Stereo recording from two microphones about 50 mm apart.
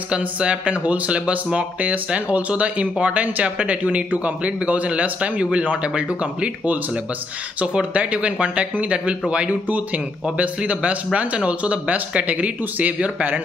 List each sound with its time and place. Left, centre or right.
0.4 s speech: right
7.6 s a man's voice: right